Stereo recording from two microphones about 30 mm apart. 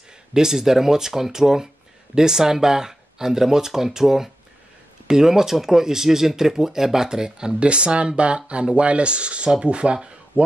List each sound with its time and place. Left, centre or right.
0.3 s speech: centre; by 9.9 s right